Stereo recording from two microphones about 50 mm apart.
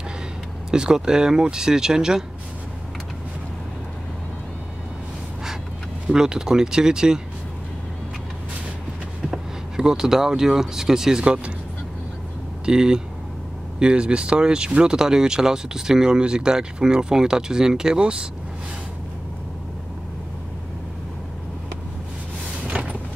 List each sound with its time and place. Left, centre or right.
0.7 s speech: centre
6.0 s speech: centre
9.3 s speech: centre
12.6 s speech: centre